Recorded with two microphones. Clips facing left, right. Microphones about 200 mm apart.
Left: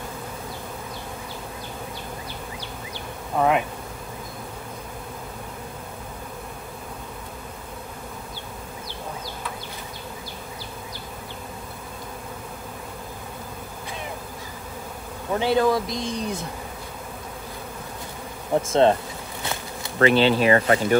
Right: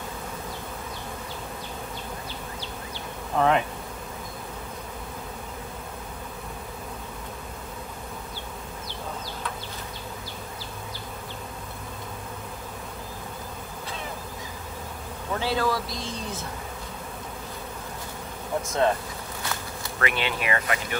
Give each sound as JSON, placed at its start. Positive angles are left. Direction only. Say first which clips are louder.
{"t": 3.3, "sound": "bee", "louder": "left 1 dB", "side_deg": 5}
{"t": 15.3, "sound": "speech", "louder": "left 6 dB", "side_deg": 20}
{"t": 18.7, "sound": "speech", "louder": "left 6 dB", "side_deg": 25}
{"t": 19.4, "sound": "bee", "louder": "left 3 dB", "side_deg": 20}
{"t": 20.1, "sound": "speech", "louder": "left 11 dB", "side_deg": 30}